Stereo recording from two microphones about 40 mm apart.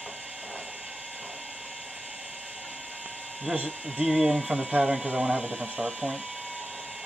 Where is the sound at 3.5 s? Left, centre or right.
Right.